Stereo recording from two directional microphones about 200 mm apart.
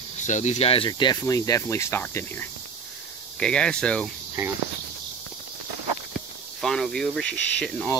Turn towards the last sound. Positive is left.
turn(degrees=5)  # may be behind; listen again after turning